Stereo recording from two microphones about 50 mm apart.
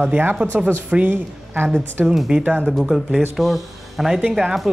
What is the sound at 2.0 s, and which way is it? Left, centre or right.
Speech, centre.